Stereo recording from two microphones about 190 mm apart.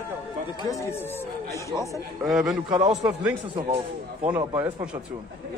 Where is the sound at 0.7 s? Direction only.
15° left (ahead or behind).